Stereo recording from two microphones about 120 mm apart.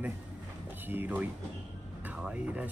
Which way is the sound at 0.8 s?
15° right (ahead or behind).